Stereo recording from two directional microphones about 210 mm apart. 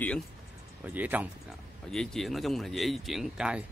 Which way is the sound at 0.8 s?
10° right (ahead or behind).